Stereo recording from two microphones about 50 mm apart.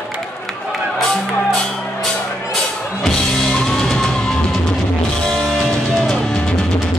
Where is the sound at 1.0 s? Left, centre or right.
Centre.